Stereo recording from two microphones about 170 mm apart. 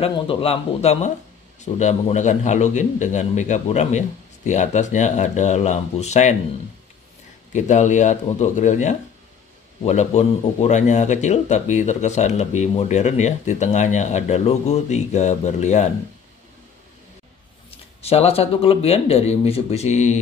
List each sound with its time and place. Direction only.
0.0 s speech: 35° left (ahead or behind)
7.5 s speech: 45° left (ahead or behind)
17.6 s speech: 35° left (ahead or behind)